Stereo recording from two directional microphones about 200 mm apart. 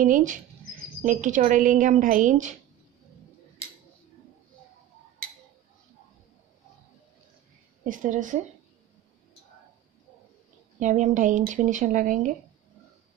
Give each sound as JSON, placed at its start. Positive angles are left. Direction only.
{"t": 0.0, "sound": "a woman's voice", "side_deg": -40}
{"t": 7.8, "sound": "a woman's voice", "side_deg": -40}
{"t": 10.8, "sound": "a woman's voice", "side_deg": -40}